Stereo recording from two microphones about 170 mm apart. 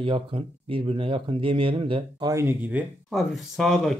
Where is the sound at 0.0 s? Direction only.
30° right (ahead or behind).